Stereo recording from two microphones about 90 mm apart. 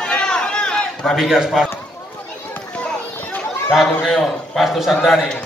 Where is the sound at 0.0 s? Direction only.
10° left (ahead or behind).